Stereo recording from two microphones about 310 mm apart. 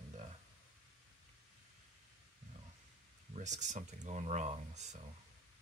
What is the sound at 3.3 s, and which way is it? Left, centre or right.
Speech, right.